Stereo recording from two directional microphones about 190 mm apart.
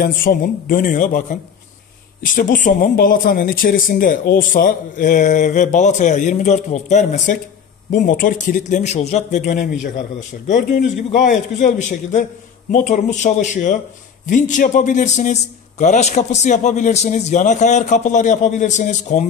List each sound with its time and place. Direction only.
0.0 s a man's voice: 50° left (ahead or behind)